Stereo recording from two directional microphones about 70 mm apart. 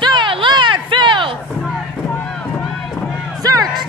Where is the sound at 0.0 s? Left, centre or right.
Right.